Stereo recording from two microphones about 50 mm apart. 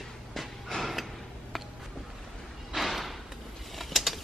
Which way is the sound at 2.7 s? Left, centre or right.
Centre.